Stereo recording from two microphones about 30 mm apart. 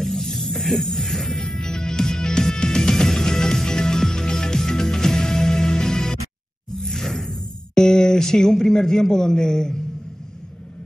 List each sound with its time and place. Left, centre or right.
0.0 s snake: centre
0.6 s music: centre
6.8 s a sound: centre